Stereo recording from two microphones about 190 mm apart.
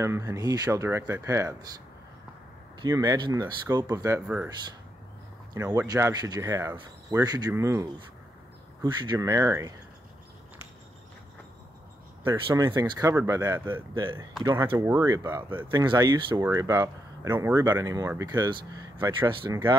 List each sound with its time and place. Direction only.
0.0 s speech: 15° right (ahead or behind)
2.8 s speech: 20° right (ahead or behind)
5.5 s speech: 15° right (ahead or behind)
9.0 s speech: 20° right (ahead or behind)
12.4 s speech: 20° right (ahead or behind)